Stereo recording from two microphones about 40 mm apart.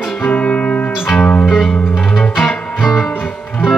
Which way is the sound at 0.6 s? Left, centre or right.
Left.